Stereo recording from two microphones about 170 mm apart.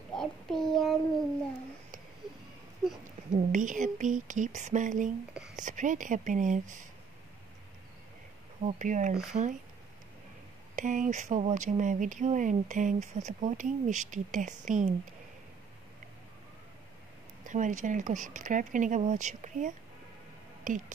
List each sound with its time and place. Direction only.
0.1 s child singing: 5° left (ahead or behind)
3.3 s speech: 50° right (ahead or behind)
8.6 s speech: 45° right (ahead or behind)
10.8 s speech: 50° right (ahead or behind)
17.5 s speech: 45° right (ahead or behind)